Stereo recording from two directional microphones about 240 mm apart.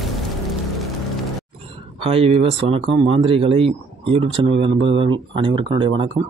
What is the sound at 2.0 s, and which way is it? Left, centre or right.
Speech, right.